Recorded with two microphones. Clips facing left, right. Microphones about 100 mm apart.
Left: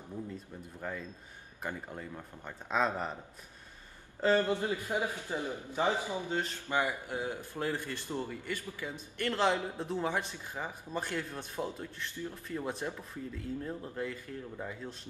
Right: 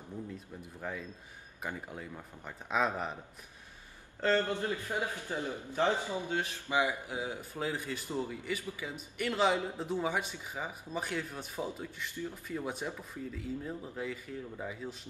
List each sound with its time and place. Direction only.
0.7 s speech: centre (ahead or behind)
4.2 s a man's voice: 15° left (ahead or behind)
6.3 s speech: 10° right (ahead or behind)